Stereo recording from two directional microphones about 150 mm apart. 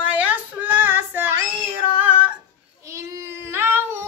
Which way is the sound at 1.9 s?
10° right (ahead or behind).